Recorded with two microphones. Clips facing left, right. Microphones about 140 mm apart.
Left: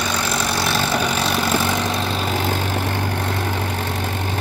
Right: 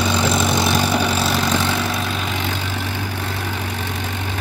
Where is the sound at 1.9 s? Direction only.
25° left (ahead or behind).